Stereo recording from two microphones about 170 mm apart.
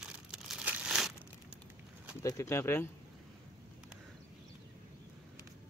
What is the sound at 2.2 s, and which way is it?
Speech, 15° left (ahead or behind).